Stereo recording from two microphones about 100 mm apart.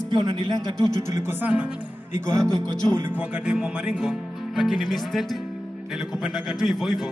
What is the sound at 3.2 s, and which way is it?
Speech, 10° right (ahead or behind).